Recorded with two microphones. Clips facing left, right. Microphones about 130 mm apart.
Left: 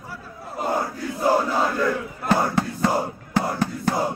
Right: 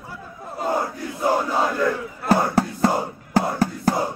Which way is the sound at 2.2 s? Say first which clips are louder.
Right 2 dB; 40° right (ahead or behind).